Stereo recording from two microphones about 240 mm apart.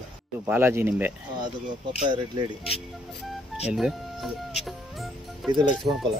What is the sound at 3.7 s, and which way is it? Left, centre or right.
Speech, centre.